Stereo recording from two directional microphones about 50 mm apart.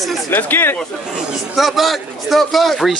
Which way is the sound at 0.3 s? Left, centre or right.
Left.